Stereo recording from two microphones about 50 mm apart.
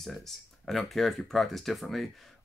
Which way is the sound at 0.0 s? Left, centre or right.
Centre.